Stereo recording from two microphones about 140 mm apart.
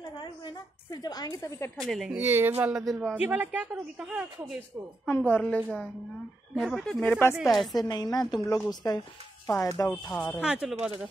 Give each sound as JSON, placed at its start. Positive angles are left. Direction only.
{"t": 0.2, "sound": "a woman's voice", "side_deg": 30}
{"t": 1.9, "sound": "speech", "side_deg": 0}
{"t": 2.1, "sound": "a woman's voice", "side_deg": -15}
{"t": 2.7, "sound": "speech", "side_deg": 0}
{"t": 3.2, "sound": "a woman's voice", "side_deg": -10}
{"t": 5.0, "sound": "a woman's voice", "side_deg": 10}
{"t": 7.3, "sound": "speech", "side_deg": 0}
{"t": 7.7, "sound": "a woman's voice", "side_deg": 30}
{"t": 9.9, "sound": "speech", "side_deg": 0}